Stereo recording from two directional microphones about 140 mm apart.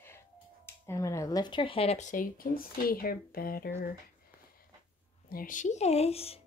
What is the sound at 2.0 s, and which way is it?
Speech, 70° left (ahead or behind).